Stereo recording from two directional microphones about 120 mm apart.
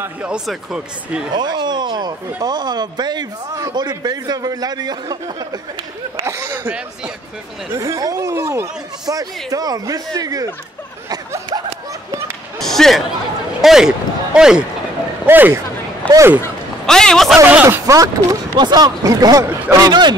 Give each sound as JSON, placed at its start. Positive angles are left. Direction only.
{"t": 0.0, "sound": "speech", "side_deg": -10}
{"t": 1.3, "sound": "a man's voice", "side_deg": -35}
{"t": 6.2, "sound": "a man's voice", "side_deg": -20}
{"t": 11.1, "sound": "a sound", "side_deg": -35}
{"t": 12.5, "sound": "music", "side_deg": 5}
{"t": 13.6, "sound": "speech", "side_deg": -5}
{"t": 15.2, "sound": "speech", "side_deg": -15}
{"t": 16.8, "sound": "a man's voice", "side_deg": 5}
{"t": 17.4, "sound": "speech", "side_deg": -15}
{"t": 17.6, "sound": "a man's voice", "side_deg": -25}